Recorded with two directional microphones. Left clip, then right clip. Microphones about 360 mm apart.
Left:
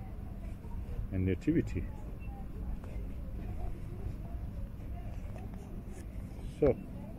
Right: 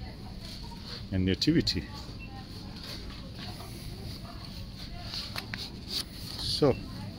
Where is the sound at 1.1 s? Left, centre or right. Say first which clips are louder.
Right 5 dB; centre.